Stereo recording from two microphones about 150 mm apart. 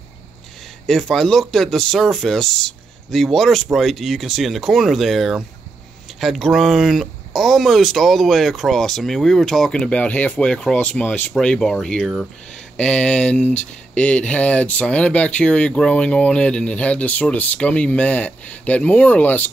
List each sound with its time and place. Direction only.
0.8 s speech: centre (ahead or behind)